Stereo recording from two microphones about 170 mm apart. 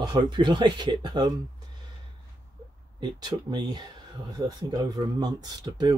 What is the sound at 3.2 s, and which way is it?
Speech, 25° right (ahead or behind).